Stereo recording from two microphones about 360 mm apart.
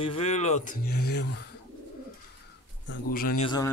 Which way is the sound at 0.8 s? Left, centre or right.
Left.